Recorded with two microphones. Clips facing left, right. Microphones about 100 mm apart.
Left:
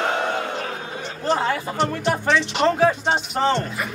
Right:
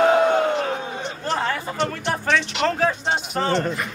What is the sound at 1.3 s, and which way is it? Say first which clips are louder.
Speech: left 2 dB; 15° left (ahead or behind).